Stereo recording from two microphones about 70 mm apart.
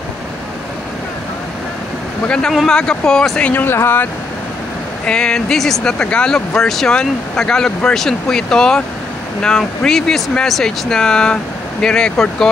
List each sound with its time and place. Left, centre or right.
2.2 s speech: centre
3.5 s speech: left
5.0 s speech: centre